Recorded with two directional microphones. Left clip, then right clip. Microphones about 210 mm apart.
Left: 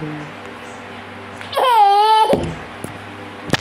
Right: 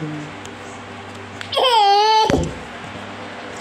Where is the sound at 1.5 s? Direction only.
15° right (ahead or behind).